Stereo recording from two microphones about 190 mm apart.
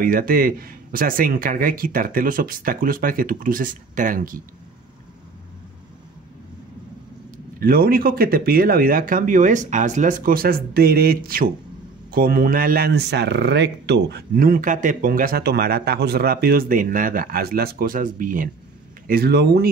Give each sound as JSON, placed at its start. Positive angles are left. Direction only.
{"t": 0.0, "sound": "speech", "side_deg": -50}
{"t": 7.6, "sound": "speech", "side_deg": -50}